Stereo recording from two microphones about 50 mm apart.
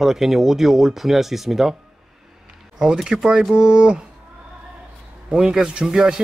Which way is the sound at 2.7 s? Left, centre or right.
Centre.